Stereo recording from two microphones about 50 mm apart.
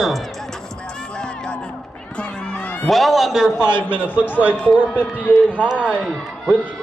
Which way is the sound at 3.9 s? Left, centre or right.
Right.